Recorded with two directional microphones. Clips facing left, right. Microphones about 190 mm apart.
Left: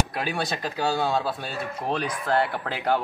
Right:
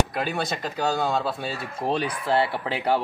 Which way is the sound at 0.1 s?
Centre (ahead or behind).